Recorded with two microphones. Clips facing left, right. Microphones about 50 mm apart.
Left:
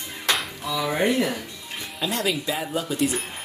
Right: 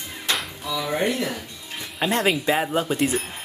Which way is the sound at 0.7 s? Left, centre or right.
Centre.